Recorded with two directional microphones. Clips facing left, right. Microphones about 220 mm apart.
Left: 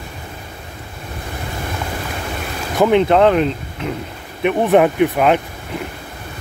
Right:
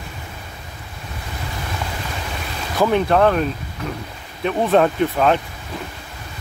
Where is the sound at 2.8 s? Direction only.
20° left (ahead or behind).